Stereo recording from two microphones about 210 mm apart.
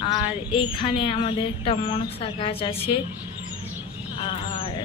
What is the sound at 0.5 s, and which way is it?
Speech, 25° left (ahead or behind).